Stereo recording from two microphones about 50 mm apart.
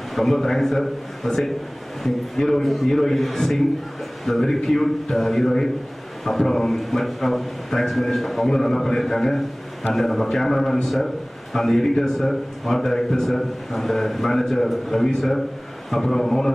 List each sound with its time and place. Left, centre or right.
0.1 s a man's voice: centre